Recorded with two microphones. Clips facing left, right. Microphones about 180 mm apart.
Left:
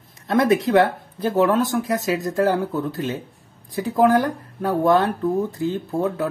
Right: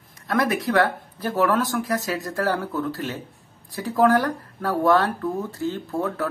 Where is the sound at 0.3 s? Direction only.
25° left (ahead or behind).